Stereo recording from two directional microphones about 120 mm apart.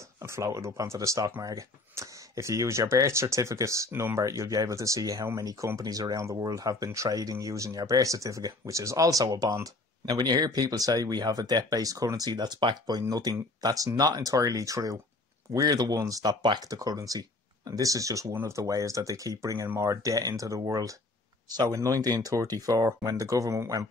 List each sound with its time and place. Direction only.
0.2 s speech: 25° right (ahead or behind)